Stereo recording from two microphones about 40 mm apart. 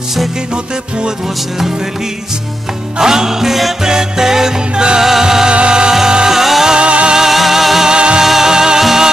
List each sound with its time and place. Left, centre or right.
3.0 s music: centre
5.5 s music: right; by 6.7 s centre
6.7 s music: right
7.2 s music: centre
7.9 s music: right
8.2 s music: centre